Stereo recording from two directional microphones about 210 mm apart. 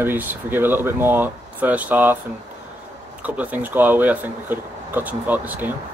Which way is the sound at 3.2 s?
5° right (ahead or behind).